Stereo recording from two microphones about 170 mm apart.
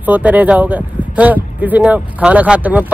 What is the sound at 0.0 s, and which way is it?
Speech, 10° right (ahead or behind).